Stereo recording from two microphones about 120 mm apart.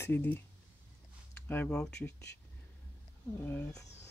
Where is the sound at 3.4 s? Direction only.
20° left (ahead or behind).